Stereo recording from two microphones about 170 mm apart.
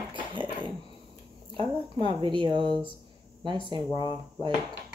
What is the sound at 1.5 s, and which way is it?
Speech, 30° right (ahead or behind).